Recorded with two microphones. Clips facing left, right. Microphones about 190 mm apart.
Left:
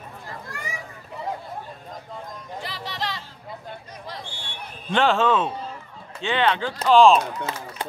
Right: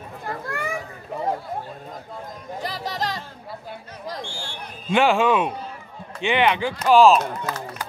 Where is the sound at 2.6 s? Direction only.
40° right (ahead or behind).